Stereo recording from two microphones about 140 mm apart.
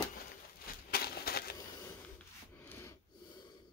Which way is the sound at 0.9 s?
90° left.